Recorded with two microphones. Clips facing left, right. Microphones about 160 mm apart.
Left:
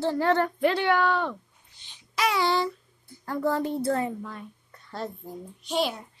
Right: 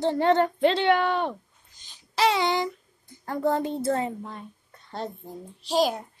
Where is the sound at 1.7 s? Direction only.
40° right (ahead or behind); by 3.2 s 15° right (ahead or behind).